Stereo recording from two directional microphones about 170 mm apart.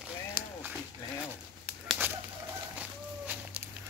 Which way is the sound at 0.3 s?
10° right (ahead or behind).